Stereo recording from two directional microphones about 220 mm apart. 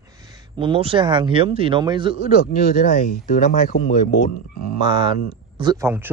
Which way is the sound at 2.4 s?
40° left (ahead or behind).